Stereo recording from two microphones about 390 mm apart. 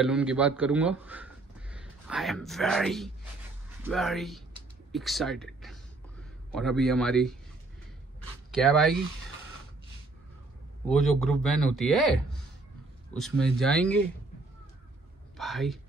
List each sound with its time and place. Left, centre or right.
0.0 s speech: centre
8.5 s speech: centre
10.9 s speech: centre
15.3 s a sound: centre